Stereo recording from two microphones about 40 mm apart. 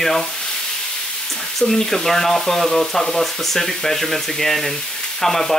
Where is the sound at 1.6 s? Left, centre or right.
Centre.